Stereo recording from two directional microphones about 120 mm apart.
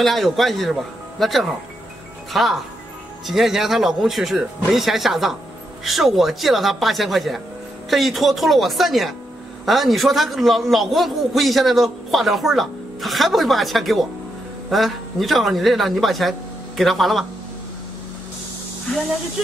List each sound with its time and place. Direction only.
0.0 s a man's voice: centre (ahead or behind)